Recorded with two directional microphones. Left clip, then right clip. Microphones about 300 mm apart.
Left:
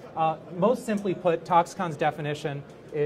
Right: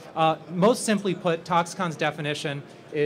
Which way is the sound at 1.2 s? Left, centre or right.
Centre.